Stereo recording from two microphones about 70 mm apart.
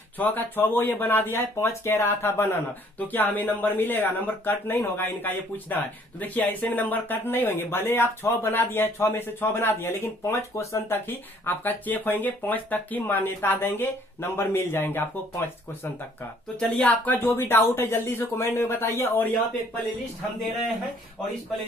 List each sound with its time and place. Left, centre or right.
0.2 s speech: left
3.0 s speech: left
11.1 s speech: left
13.0 s speech: left
16.5 s speech: centre
17.0 s speech: left